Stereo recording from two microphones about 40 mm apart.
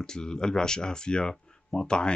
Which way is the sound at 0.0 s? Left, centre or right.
Centre.